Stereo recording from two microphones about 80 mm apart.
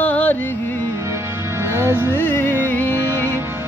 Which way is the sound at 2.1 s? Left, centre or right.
Left.